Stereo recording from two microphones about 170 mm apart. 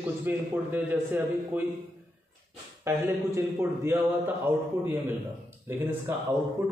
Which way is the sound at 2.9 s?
15° right (ahead or behind).